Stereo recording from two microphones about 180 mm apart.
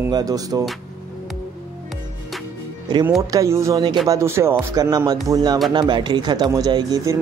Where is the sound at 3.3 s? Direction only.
15° right (ahead or behind).